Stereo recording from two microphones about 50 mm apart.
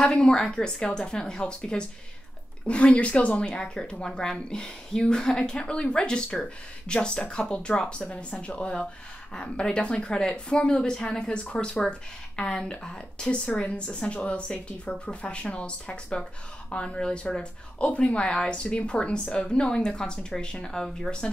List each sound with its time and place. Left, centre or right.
0.0 s a woman's voice: centre
13.5 s a woman's voice: left; by 21.1 s centre